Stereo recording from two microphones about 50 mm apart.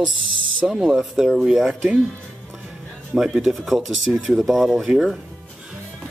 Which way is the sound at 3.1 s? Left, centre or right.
Centre.